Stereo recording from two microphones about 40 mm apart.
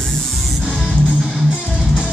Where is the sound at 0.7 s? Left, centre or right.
Right.